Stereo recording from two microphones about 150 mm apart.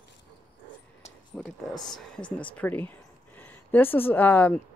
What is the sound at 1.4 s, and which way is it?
Speech, 5° left (ahead or behind).